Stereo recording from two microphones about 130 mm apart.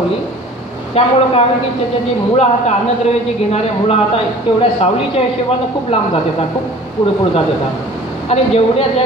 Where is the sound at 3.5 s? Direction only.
50° left (ahead or behind).